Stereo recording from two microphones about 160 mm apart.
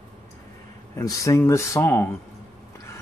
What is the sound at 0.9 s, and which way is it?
Speech, 20° left (ahead or behind).